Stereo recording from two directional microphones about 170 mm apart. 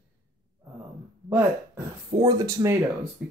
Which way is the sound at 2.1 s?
20° right (ahead or behind).